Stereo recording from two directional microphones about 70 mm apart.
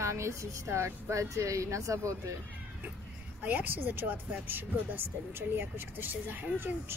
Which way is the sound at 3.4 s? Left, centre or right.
Right.